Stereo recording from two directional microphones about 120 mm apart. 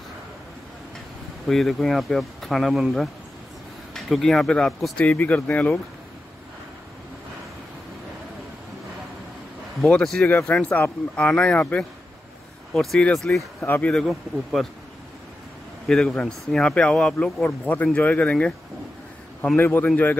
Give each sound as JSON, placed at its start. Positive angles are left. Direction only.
{"t": 1.5, "sound": "speech", "side_deg": 0}
{"t": 9.8, "sound": "speech", "side_deg": 5}
{"t": 13.6, "sound": "speech", "side_deg": 15}
{"t": 14.0, "sound": "speech", "side_deg": 0}
{"t": 15.9, "sound": "speech", "side_deg": 5}
{"t": 19.5, "sound": "speech", "side_deg": 15}